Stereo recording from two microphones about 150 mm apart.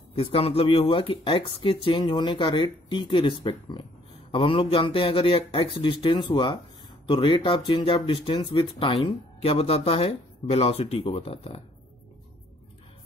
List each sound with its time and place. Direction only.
0.1 s speech: 40° left (ahead or behind)